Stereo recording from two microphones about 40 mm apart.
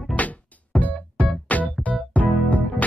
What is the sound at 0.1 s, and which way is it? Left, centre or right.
Music, left.